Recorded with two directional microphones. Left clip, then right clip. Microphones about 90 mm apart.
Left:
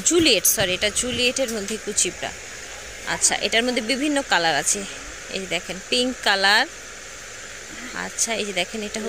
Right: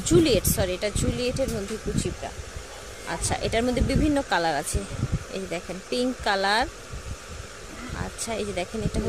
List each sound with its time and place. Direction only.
0.0 s speech: 15° right (ahead or behind)
3.1 s speech: 15° right (ahead or behind)
8.0 s speech: 15° right (ahead or behind)